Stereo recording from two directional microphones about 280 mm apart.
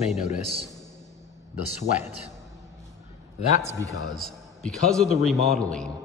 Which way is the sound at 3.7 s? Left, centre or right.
Centre.